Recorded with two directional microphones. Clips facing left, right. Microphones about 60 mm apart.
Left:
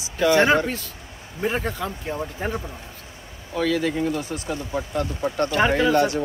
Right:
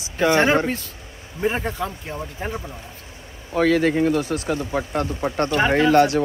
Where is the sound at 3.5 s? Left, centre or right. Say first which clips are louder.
Right 5 dB; right.